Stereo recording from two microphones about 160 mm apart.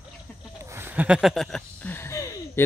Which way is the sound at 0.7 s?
15° right (ahead or behind).